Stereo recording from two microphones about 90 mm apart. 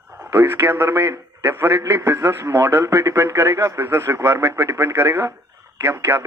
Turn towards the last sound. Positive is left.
turn(degrees=-20)  # may be behind; listen again after turning